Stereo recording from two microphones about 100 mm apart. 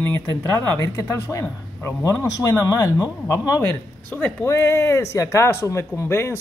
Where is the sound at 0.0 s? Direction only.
20° left (ahead or behind).